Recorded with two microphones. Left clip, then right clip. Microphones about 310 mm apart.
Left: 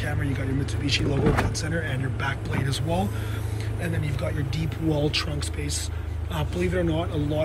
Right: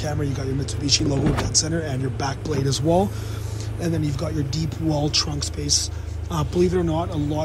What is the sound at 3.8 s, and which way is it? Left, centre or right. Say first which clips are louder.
Speech: right 5 dB; centre.